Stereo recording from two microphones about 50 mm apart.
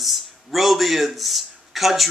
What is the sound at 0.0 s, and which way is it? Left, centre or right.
A man's voice, centre.